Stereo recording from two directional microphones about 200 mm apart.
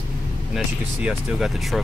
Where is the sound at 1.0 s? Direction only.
Centre (ahead or behind).